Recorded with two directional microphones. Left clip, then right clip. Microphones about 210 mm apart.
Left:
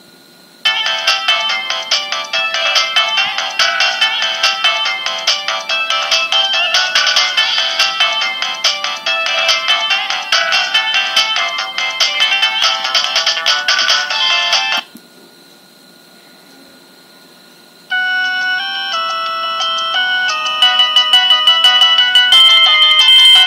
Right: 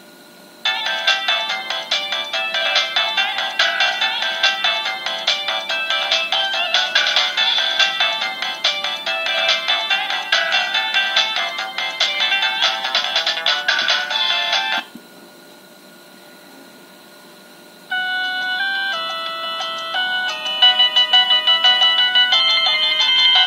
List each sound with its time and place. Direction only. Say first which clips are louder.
0.6 s music: left 6 dB; 25° left (ahead or behind)
17.8 s ringtone: left 6 dB; 25° left (ahead or behind)